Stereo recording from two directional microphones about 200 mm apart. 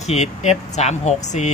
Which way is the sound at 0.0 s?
35° left (ahead or behind).